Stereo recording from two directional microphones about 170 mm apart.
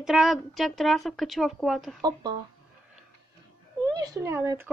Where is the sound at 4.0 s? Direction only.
20° right (ahead or behind).